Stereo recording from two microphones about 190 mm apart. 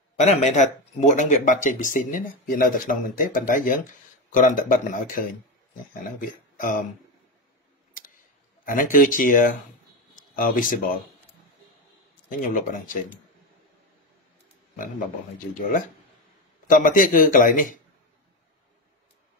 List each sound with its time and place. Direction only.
0.2 s speech: 40° left (ahead or behind)
6.2 s speech: 45° left (ahead or behind)
8.0 s a sound: 45° left (ahead or behind)
8.9 s speech: 45° left (ahead or behind)
12.3 s speech: 45° left (ahead or behind)
14.8 s speech: 45° left (ahead or behind)